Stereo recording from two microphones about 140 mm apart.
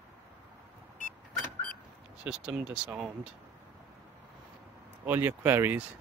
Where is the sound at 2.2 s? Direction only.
5° right (ahead or behind).